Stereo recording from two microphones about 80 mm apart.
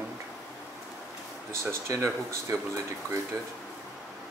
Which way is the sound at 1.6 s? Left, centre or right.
Right.